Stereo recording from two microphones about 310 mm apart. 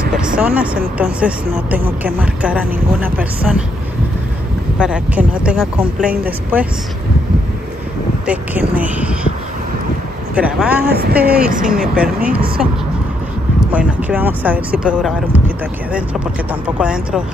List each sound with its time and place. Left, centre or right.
0.4 s speech: centre
4.7 s speech: centre
8.3 s speech: centre
10.3 s speech: centre
10.9 s speech: right
13.7 s speech: centre